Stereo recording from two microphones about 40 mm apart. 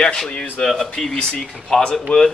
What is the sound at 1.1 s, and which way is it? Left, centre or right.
Speech, left.